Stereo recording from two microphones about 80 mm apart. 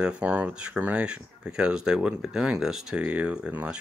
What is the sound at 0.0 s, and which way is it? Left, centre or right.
Speech, centre.